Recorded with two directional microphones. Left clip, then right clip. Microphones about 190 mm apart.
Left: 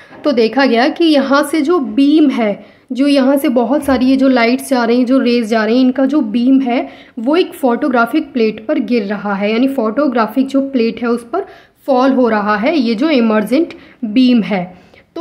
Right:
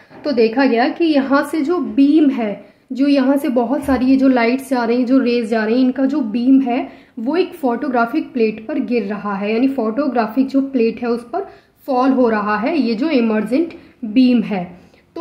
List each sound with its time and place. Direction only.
0.2 s a woman's voice: 25° left (ahead or behind)